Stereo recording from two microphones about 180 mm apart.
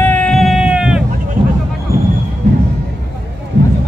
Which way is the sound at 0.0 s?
5° left (ahead or behind).